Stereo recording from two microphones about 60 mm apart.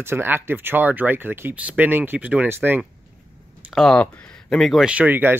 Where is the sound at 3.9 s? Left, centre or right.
Centre.